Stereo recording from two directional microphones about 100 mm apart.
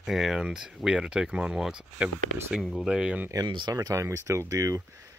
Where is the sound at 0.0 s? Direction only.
5° right (ahead or behind).